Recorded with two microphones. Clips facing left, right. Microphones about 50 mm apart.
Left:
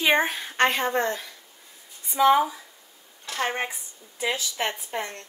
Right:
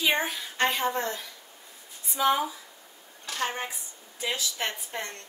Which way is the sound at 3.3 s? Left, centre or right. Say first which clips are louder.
Left 4 dB; left.